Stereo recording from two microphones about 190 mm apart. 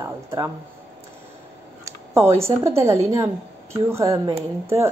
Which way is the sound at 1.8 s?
15° right (ahead or behind).